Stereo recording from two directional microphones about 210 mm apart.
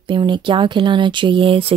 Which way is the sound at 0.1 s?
25° right (ahead or behind).